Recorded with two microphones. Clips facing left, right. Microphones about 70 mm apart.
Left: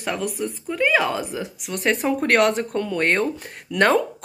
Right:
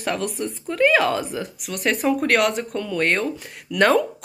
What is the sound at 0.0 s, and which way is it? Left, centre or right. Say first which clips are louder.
Speech: right 1 dB; centre.